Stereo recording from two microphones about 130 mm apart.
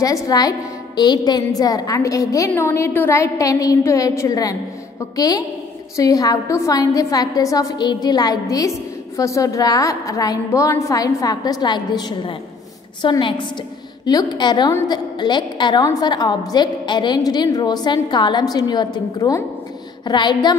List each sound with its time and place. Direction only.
0.0 s a woman's voice: 30° left (ahead or behind)